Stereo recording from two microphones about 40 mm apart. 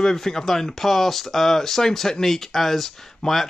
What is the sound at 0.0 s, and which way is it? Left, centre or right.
Speech, centre.